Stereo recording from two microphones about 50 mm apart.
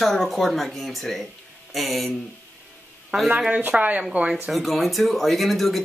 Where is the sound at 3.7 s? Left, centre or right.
Right.